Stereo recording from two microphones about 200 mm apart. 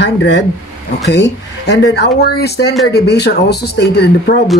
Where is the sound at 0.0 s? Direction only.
60° left (ahead or behind).